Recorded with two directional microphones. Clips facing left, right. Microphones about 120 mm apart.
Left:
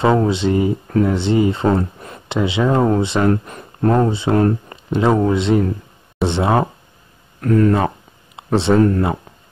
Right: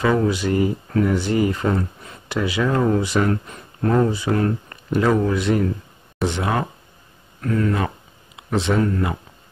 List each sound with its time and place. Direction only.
0.0 s speech: 30° left (ahead or behind)